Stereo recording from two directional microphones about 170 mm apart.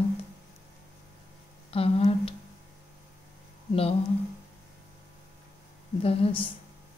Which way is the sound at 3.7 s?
35° left (ahead or behind).